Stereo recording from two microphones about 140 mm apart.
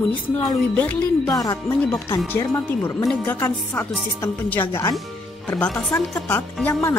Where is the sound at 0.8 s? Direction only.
10° left (ahead or behind).